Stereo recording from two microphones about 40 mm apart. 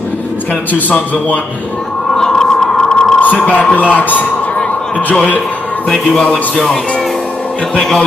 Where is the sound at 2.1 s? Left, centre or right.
Centre.